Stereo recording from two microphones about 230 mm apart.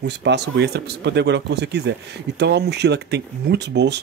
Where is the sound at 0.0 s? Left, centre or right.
Right.